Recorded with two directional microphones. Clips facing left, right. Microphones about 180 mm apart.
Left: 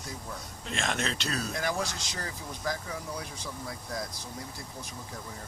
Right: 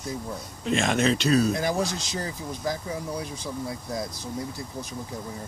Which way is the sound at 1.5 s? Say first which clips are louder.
Right 6 dB; 30° right (ahead or behind).